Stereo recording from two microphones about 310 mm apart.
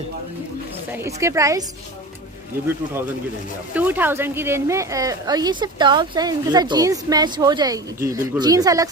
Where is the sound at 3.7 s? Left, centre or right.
Centre.